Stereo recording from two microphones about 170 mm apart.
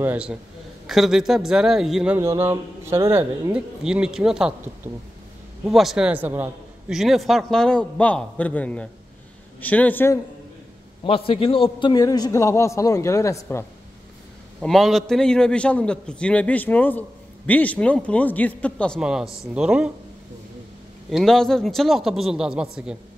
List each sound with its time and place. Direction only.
0.0 s a man's voice: 10° right (ahead or behind)
2.1 s speech: 15° right (ahead or behind)
3.5 s a man's voice: 5° right (ahead or behind); by 10.1 s 10° left (ahead or behind)
11.1 s a man's voice: 30° left (ahead or behind); by 13.7 s 15° left (ahead or behind)
14.6 s a man's voice: centre (ahead or behind)
18.9 s a man's voice: 5° right (ahead or behind)
21.1 s a man's voice: centre (ahead or behind)